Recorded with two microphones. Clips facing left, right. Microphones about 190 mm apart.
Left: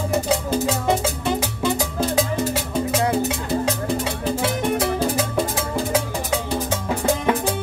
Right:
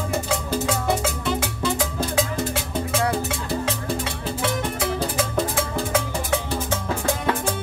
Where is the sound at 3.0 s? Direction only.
20° left (ahead or behind).